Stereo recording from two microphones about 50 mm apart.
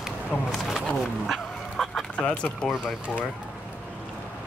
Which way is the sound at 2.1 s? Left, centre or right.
Left.